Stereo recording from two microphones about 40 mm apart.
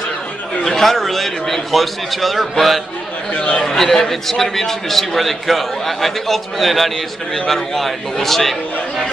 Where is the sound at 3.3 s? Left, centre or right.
Left.